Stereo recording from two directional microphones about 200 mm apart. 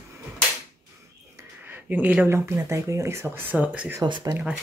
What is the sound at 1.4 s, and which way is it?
Speech, 10° right (ahead or behind).